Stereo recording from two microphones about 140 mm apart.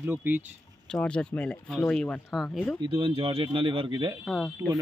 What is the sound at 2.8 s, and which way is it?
Speech, 40° right (ahead or behind).